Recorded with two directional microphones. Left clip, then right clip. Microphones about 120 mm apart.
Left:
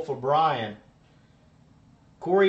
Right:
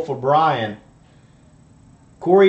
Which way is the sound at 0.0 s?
20° right (ahead or behind).